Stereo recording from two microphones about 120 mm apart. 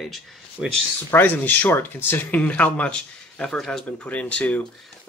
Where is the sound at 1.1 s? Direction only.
15° left (ahead or behind).